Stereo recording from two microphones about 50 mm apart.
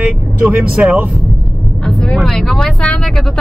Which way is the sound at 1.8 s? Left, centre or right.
Centre.